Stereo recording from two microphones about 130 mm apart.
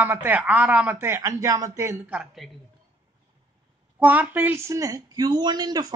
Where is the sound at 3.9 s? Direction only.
10° right (ahead or behind).